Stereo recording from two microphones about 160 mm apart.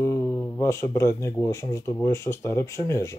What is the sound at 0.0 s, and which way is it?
Speech, 15° left (ahead or behind).